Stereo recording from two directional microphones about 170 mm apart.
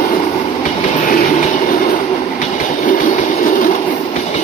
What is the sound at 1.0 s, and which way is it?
Train, 50° left (ahead or behind).